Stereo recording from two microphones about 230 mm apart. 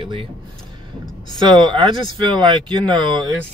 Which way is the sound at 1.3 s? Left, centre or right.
Right.